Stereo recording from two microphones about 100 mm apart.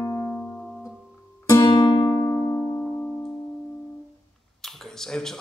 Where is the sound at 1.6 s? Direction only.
50° left (ahead or behind).